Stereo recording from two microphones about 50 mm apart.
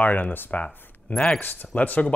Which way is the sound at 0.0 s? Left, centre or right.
Left.